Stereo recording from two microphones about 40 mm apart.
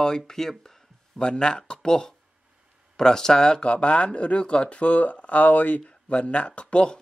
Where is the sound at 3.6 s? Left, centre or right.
Left.